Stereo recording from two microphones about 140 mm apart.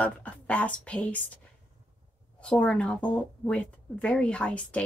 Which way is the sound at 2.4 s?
10° left (ahead or behind).